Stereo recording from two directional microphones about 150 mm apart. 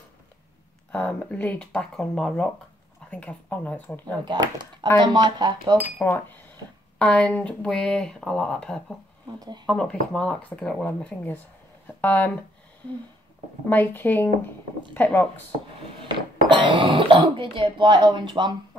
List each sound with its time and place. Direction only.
0.9 s speech: 10° left (ahead or behind)
4.2 s speech: 30° right (ahead or behind)
5.9 s speech: 10° left (ahead or behind)
13.7 s speech: 10° left (ahead or behind)
16.4 s speech: 35° right (ahead or behind)